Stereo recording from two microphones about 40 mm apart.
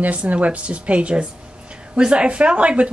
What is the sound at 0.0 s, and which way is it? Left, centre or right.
Speech, right.